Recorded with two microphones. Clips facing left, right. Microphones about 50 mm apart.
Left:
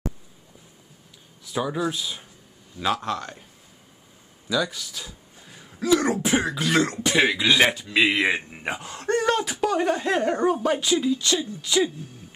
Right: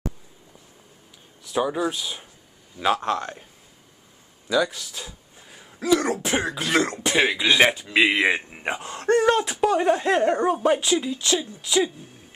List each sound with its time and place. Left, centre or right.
1.5 s speech: centre
4.6 s speech: centre